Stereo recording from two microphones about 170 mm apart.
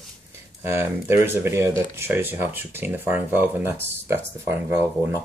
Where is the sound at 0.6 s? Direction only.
15° right (ahead or behind).